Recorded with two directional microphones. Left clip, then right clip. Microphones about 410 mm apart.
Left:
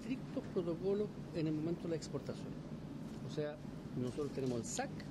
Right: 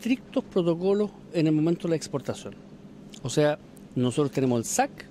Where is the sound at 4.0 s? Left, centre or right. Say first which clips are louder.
Right 15 dB; right.